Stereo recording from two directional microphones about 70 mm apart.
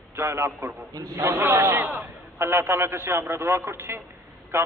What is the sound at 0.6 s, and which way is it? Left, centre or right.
Speech, right.